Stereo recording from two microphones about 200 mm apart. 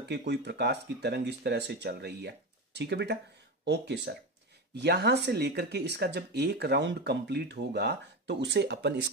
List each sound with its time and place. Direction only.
0.1 s speech: 60° right (ahead or behind)